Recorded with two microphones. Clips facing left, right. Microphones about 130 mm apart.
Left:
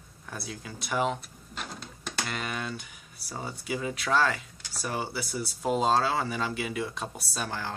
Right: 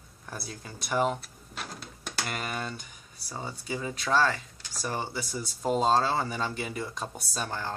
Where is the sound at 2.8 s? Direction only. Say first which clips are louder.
Even; 5° left (ahead or behind).